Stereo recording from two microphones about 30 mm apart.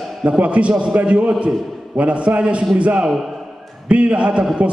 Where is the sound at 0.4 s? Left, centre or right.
Right.